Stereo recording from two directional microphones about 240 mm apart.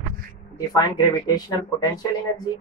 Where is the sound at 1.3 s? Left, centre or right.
Centre.